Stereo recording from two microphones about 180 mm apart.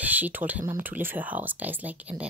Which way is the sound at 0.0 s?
10° right (ahead or behind).